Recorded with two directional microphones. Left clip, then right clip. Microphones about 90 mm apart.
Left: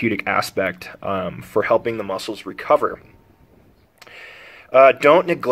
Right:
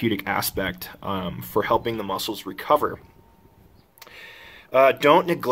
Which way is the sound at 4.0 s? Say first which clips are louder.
Left 3 dB; 10° right (ahead or behind).